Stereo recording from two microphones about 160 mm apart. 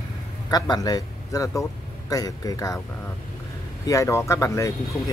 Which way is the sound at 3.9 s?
20° left (ahead or behind).